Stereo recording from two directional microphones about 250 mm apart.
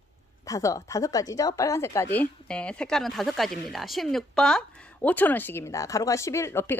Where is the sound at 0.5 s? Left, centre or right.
Centre.